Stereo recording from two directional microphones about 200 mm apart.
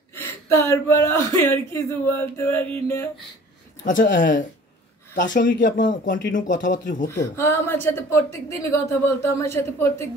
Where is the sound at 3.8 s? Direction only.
45° left (ahead or behind).